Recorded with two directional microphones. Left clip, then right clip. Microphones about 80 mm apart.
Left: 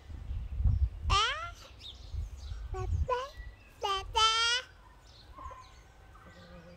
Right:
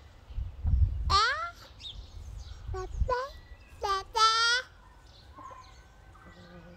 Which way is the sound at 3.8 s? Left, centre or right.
Centre.